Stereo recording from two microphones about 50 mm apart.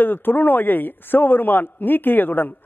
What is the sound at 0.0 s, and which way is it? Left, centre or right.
A man's voice, left.